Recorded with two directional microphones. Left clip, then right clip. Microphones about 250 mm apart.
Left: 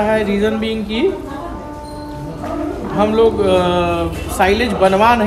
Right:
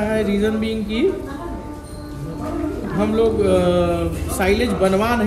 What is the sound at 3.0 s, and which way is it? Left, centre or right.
A man's voice, centre.